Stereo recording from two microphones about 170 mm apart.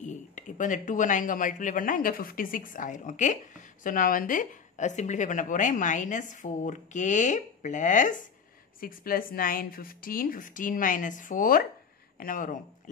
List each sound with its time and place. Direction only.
0.0 s speech: 45° left (ahead or behind)
8.8 s a woman's voice: 60° left (ahead or behind)